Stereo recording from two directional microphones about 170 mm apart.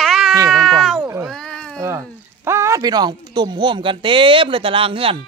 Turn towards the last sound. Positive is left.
turn(degrees=-35)  # may be behind; listen again after turning